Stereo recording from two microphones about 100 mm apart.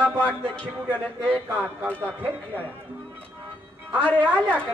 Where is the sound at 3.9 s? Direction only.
15° left (ahead or behind).